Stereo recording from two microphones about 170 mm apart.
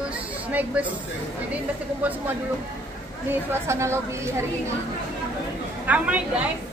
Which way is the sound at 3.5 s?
15° right (ahead or behind).